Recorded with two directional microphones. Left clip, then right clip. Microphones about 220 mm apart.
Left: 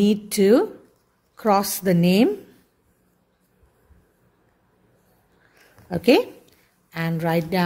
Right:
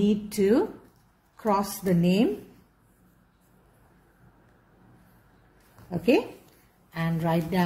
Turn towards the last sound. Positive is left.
turn(degrees=35)  # may be behind; listen again after turning